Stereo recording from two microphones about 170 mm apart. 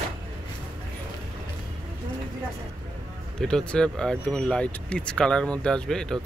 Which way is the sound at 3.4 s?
5° left (ahead or behind).